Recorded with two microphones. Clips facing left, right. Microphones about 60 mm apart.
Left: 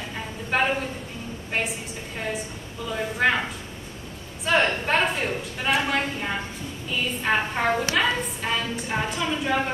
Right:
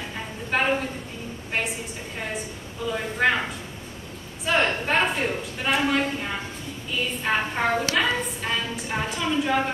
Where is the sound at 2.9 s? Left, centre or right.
Centre.